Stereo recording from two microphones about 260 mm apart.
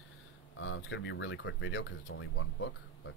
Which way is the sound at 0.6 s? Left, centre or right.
Left.